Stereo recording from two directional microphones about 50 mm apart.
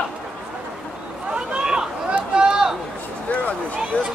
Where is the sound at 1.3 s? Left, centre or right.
Centre.